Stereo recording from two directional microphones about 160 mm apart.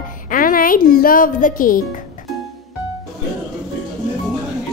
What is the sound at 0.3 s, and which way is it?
A woman's voice, 60° left (ahead or behind).